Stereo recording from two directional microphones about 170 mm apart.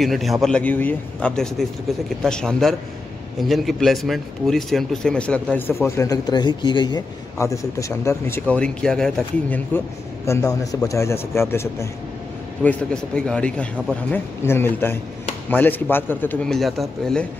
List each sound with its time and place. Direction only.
0.0 s a man's voice: centre (ahead or behind)
10.2 s a man's voice: 15° left (ahead or behind); by 16.8 s centre (ahead or behind)